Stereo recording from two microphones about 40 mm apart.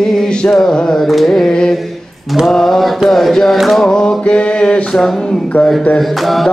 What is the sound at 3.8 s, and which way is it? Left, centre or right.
Mantra, centre.